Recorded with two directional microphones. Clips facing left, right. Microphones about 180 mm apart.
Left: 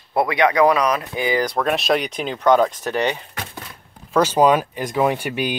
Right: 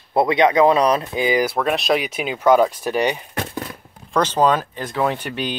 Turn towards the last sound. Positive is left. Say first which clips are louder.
# left 2 dB
turn(degrees=10)  # may be behind; listen again after turning